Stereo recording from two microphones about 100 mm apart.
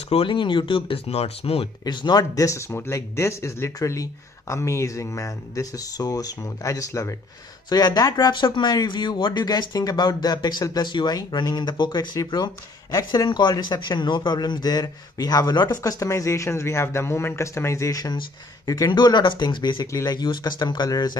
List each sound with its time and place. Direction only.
0.1 s speech: 60° left (ahead or behind)
1.9 s speech: 45° left (ahead or behind); by 7.2 s 30° left (ahead or behind)
7.7 s speech: 40° left (ahead or behind)
18.9 s speech: 50° left (ahead or behind)